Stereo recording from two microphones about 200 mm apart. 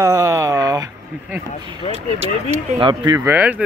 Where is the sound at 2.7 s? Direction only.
25° right (ahead or behind); by 3.6 s 10° right (ahead or behind).